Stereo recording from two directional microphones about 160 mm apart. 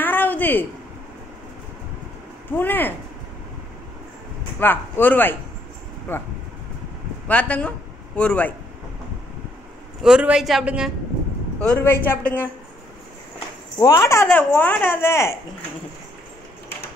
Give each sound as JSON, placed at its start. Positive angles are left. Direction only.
{"t": 0.0, "sound": "a sound", "side_deg": 10}
{"t": 2.5, "sound": "speech", "side_deg": 10}
{"t": 4.6, "sound": "speech", "side_deg": 10}
{"t": 7.2, "sound": "speech", "side_deg": 10}
{"t": 10.0, "sound": "speech", "side_deg": -5}
{"t": 11.6, "sound": "speech", "side_deg": 10}
{"t": 13.7, "sound": "speech", "side_deg": 20}